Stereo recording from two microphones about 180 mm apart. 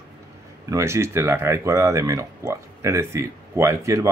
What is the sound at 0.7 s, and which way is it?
Speech, 15° right (ahead or behind).